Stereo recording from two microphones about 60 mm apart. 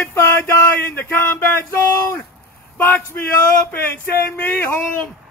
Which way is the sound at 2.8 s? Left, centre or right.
Left.